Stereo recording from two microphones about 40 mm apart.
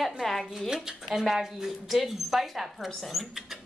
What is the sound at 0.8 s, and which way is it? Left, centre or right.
A woman's voice, centre.